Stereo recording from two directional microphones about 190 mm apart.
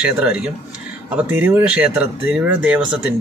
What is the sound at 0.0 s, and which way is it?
Speech, 5° right (ahead or behind).